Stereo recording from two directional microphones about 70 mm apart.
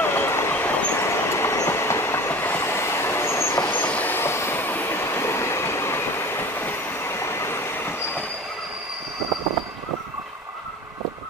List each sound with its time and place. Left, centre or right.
0.0 s train: left
0.9 s train: left
3.7 s train: left